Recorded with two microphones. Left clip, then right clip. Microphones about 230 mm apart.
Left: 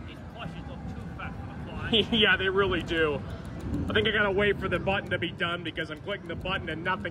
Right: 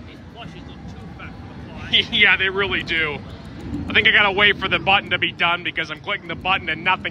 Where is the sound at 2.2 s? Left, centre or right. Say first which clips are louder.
Right 7 dB; centre.